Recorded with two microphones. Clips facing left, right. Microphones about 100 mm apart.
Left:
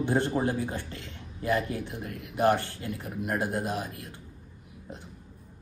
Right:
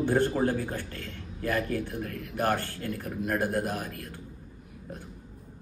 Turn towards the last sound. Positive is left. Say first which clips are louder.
# even
turn(degrees=20)  # may be behind; listen again after turning